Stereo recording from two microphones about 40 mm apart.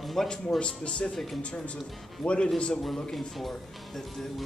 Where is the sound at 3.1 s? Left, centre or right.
Centre.